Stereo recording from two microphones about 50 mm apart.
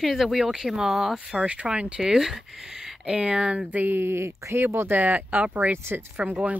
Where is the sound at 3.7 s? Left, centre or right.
Right.